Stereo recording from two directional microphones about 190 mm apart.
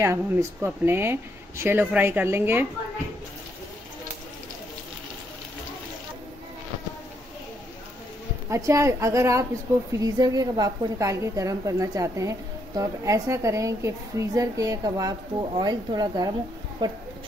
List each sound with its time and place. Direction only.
0.0 s a woman's voice: 15° right (ahead or behind)
8.5 s a woman's voice: 15° right (ahead or behind)